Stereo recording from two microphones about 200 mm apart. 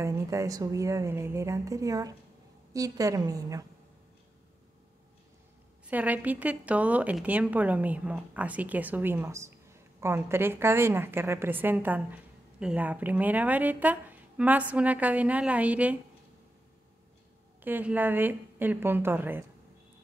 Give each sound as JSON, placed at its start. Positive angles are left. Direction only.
{"t": 0.0, "sound": "a woman's voice", "side_deg": -15}
{"t": 5.9, "sound": "a woman's voice", "side_deg": -10}
{"t": 17.6, "sound": "a woman's voice", "side_deg": -10}